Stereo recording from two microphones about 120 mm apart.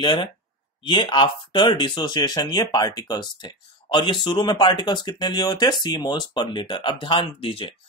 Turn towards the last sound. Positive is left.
turn(degrees=50)  # may be behind; listen again after turning